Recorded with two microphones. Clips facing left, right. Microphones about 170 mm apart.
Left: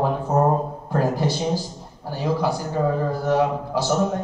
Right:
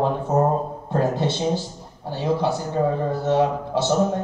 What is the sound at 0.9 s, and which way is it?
A man's voice, 25° right (ahead or behind).